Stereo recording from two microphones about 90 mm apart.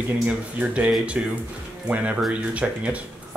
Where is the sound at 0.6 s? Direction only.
15° right (ahead or behind).